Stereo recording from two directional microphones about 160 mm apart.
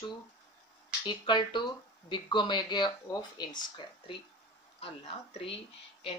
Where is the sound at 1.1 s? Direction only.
30° left (ahead or behind).